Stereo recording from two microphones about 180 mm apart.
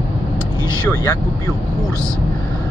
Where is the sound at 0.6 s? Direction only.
15° left (ahead or behind).